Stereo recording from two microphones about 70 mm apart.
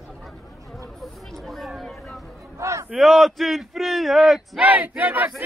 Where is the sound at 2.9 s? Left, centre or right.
Centre.